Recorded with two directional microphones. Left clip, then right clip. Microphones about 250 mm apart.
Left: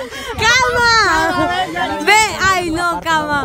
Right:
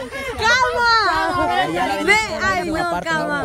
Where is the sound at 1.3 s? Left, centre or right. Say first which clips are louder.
Left 3 dB; left.